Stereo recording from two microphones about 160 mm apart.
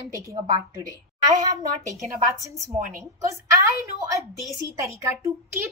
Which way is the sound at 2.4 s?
20° right (ahead or behind).